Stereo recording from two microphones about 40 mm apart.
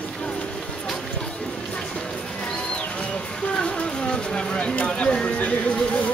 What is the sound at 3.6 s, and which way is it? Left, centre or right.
Vehicle, left.